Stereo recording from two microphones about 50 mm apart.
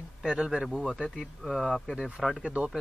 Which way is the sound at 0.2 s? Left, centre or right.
Centre.